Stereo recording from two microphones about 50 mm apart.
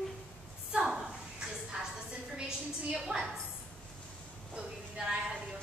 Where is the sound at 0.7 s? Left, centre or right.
Centre.